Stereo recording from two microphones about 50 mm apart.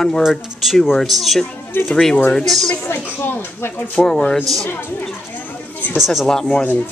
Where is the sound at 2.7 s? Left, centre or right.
Left.